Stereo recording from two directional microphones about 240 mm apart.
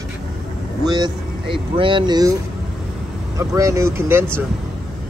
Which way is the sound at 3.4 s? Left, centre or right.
Centre.